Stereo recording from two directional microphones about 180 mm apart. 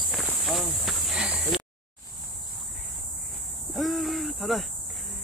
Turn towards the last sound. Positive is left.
turn(degrees=0)  # may be behind; listen again after turning